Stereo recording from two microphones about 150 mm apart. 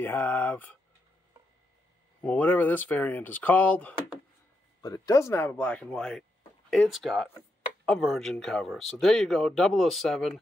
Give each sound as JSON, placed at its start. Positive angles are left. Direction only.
{"t": 0.0, "sound": "speech", "side_deg": 10}
{"t": 2.2, "sound": "speech", "side_deg": 10}
{"t": 4.8, "sound": "speech", "side_deg": 20}